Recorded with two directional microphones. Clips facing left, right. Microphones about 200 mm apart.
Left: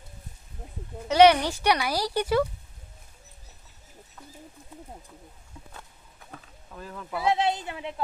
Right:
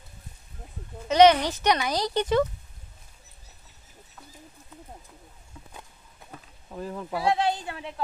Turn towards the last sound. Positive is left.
turn(degrees=20)  # may be behind; listen again after turning